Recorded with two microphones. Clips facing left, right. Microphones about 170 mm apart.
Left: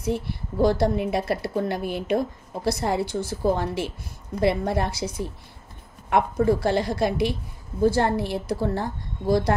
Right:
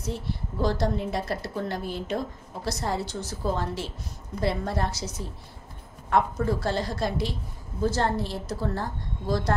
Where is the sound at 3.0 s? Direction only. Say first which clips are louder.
Left 6 dB; 55° left (ahead or behind).